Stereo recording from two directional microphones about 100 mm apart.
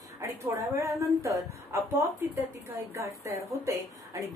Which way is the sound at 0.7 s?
30° right (ahead or behind).